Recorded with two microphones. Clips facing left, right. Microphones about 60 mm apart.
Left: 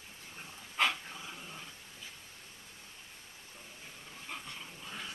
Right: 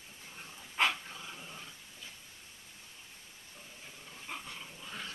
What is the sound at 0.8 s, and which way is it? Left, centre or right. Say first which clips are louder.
Dog: right 1 dB; centre.